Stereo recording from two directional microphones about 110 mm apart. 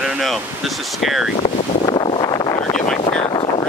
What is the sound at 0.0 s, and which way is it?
Speech, centre (ahead or behind).